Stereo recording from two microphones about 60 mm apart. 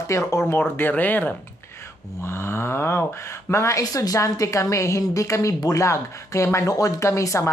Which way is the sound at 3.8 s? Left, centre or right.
Left.